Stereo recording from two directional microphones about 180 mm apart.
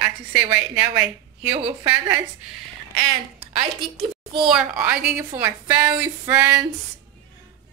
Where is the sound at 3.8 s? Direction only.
25° right (ahead or behind).